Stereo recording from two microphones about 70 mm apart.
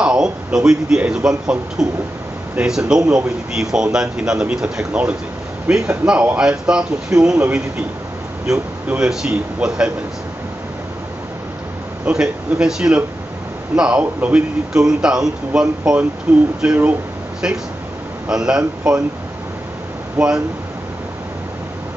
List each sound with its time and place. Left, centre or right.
0.0 s a man's voice: centre
8.8 s a man's voice: centre
12.1 s a man's voice: centre
18.3 s a man's voice: centre
20.2 s a man's voice: centre